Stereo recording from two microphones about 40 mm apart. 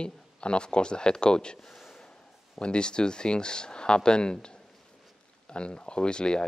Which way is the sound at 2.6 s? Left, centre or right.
Left.